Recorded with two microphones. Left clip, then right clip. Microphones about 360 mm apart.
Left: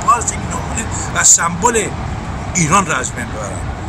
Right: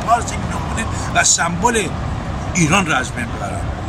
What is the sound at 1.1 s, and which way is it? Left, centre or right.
Speech, centre.